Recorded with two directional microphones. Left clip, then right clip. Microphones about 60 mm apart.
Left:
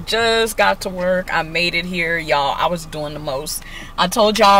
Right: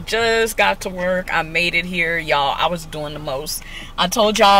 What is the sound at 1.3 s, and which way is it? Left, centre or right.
Speech, centre.